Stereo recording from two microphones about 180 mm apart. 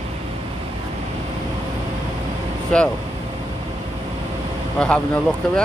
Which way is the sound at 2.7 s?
5° left (ahead or behind).